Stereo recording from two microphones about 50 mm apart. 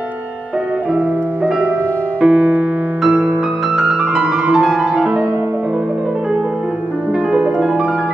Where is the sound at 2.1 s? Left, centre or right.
Right.